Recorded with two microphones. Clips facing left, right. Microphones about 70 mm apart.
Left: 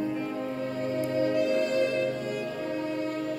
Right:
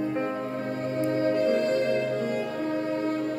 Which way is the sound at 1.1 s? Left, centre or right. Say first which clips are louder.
Right 2 dB; right.